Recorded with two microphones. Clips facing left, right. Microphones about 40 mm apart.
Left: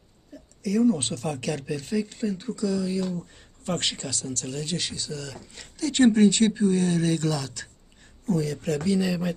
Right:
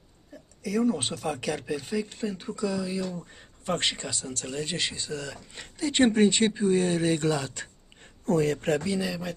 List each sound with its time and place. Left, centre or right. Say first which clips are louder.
0.6 s speech: left 4 dB; centre; by 8.1 s right
8.3 s speech: right 2 dB; right
8.8 s speech: left 4 dB; centre